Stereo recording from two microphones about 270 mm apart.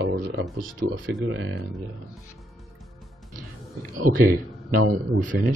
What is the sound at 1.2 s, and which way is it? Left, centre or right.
Speech, right.